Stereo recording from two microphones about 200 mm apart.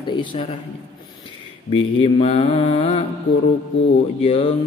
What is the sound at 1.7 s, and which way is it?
Mantra, 30° left (ahead or behind).